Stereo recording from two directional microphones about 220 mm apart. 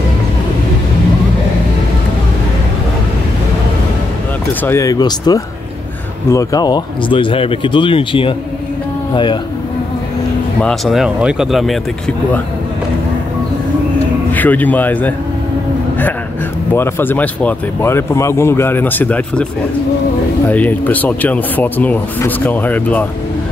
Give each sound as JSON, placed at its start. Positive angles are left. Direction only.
{"t": 4.6, "sound": "speech", "side_deg": 15}
{"t": 10.6, "sound": "speech", "side_deg": 0}
{"t": 14.3, "sound": "speech", "side_deg": 10}
{"t": 16.7, "sound": "speech", "side_deg": 10}
{"t": 20.4, "sound": "speech", "side_deg": 5}